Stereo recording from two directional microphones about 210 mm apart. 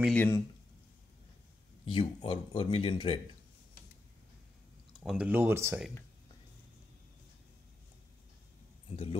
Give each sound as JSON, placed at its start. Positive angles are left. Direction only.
{"t": 0.0, "sound": "speech", "side_deg": 5}
{"t": 2.0, "sound": "speech", "side_deg": 30}
{"t": 5.0, "sound": "speech", "side_deg": -5}